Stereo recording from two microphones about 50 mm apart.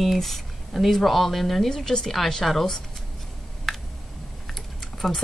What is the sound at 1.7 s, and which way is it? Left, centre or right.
Speech, centre.